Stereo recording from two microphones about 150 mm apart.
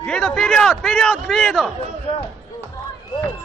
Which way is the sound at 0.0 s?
5° left (ahead or behind).